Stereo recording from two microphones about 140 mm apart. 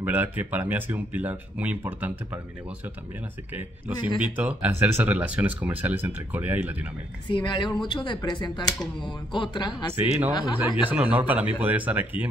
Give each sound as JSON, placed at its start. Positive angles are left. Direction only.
{"t": 0.0, "sound": "speech", "side_deg": -10}
{"t": 3.5, "sound": "speech", "side_deg": -10}
{"t": 7.2, "sound": "speech", "side_deg": 35}
{"t": 10.9, "sound": "speech", "side_deg": -10}